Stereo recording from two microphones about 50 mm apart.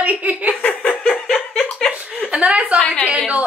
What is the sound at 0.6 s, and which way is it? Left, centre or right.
Laughter, left.